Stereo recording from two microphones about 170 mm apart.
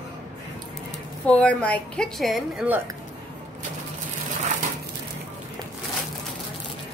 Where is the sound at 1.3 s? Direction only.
5° left (ahead or behind).